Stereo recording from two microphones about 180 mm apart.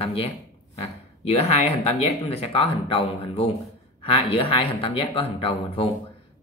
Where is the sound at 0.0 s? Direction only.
35° left (ahead or behind).